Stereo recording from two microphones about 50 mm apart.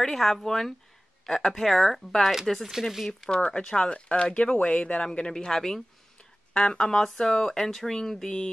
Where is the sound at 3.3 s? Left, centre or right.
Centre.